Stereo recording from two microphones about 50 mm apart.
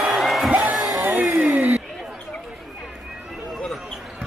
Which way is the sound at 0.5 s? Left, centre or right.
Right.